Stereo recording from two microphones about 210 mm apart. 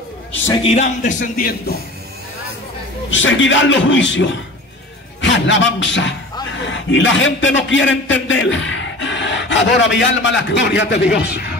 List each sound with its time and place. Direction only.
0.6 s speech: 30° left (ahead or behind)
3.1 s a man's voice: 65° left (ahead or behind)